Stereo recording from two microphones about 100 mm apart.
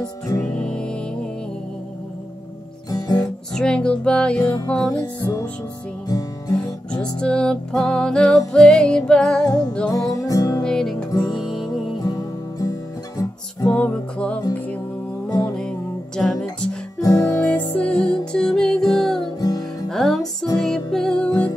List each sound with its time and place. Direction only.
0.0 s music: 35° left (ahead or behind)
0.5 s music: 10° left (ahead or behind)
2.9 s music: 40° left (ahead or behind)
3.2 s music: 10° left (ahead or behind)
6.0 s music: 35° left (ahead or behind)
7.0 s music: 10° left (ahead or behind)
9.8 s music: 35° left (ahead or behind)
10.6 s music: 5° left (ahead or behind)
12.0 s music: 35° left (ahead or behind)
13.7 s music: 10° left (ahead or behind)
15.2 s music: 40° left (ahead or behind)
16.2 s music: 5° left (ahead or behind)
17.0 s music: 35° left (ahead or behind)
17.5 s music: 10° left (ahead or behind)